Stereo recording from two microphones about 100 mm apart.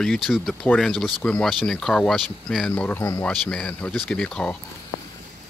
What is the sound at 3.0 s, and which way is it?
Speech, 25° left (ahead or behind).